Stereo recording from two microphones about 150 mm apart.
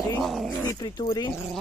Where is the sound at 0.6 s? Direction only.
20° left (ahead or behind).